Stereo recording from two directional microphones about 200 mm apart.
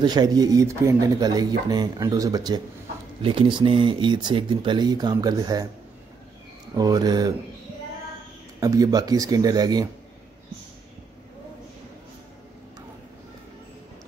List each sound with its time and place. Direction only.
0.0 s speech: 20° right (ahead or behind)
6.7 s speech: 20° right (ahead or behind)
8.5 s speech: 15° right (ahead or behind)